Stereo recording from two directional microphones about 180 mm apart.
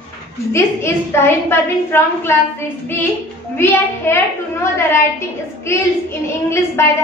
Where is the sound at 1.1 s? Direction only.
15° left (ahead or behind).